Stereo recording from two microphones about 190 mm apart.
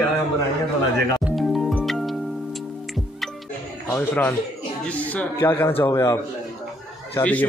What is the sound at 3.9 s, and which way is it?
A man's voice, 5° left (ahead or behind).